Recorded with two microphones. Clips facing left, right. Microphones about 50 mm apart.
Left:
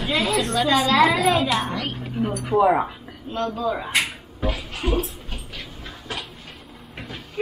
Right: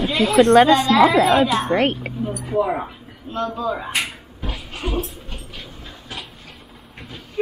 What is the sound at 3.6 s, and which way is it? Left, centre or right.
Speech, centre.